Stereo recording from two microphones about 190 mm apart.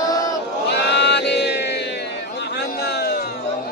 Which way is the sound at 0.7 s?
65° left (ahead or behind).